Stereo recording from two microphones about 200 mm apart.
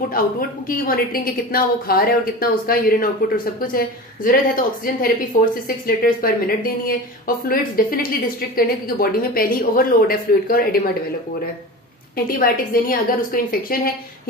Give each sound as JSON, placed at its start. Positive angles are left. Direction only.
{"t": 0.1, "sound": "a woman's voice", "side_deg": 45}
{"t": 12.3, "sound": "a woman's voice", "side_deg": 45}